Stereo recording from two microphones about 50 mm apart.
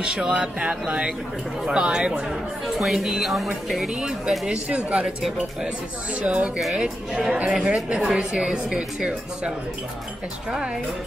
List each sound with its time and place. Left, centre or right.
0.0 s a woman's voice: centre
4.3 s speech: centre
4.6 s speech: right
6.1 s speech: right
6.7 s speech: centre
10.5 s speech: centre